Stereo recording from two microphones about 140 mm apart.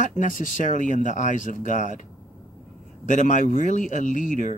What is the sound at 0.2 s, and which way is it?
Speech, 70° left (ahead or behind).